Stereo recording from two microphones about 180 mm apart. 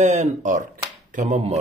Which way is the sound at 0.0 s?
40° right (ahead or behind).